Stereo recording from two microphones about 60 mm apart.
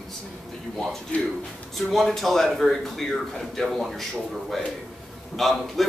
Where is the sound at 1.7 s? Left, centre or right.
Centre.